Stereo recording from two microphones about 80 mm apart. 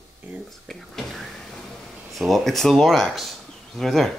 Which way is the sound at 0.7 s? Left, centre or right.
Centre.